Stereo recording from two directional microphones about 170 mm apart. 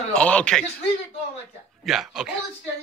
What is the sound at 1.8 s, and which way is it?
Speech, centre (ahead or behind).